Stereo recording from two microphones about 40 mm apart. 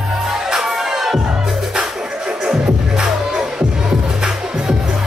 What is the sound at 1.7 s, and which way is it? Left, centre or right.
Music, right.